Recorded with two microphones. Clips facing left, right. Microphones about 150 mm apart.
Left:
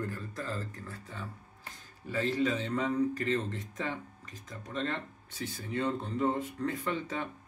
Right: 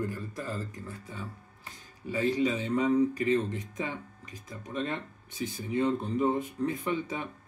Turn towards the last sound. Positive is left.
turn(degrees=-15)  # may be behind; listen again after turning